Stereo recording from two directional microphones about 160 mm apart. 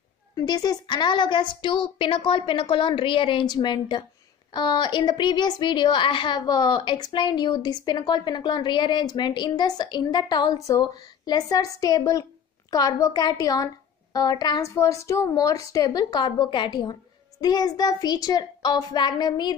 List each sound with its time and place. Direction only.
0.4 s a woman's voice: 25° left (ahead or behind)